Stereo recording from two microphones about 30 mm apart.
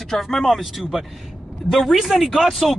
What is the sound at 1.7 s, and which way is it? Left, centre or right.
Speech, centre.